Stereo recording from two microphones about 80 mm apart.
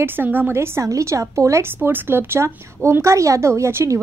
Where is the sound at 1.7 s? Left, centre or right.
Right.